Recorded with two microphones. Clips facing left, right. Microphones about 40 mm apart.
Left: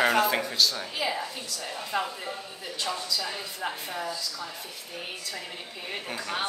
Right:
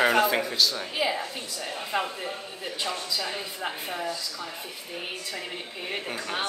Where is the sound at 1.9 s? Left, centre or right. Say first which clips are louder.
Right 1 dB; centre.